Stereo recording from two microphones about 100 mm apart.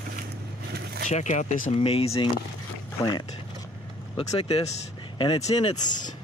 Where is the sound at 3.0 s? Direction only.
50° left (ahead or behind).